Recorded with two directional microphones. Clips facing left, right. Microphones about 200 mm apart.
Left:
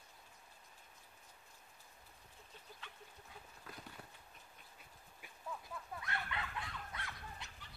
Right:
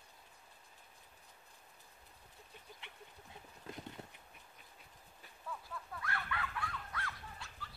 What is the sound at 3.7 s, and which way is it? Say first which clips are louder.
Clip-clop: right 6 dB; 25° right (ahead or behind).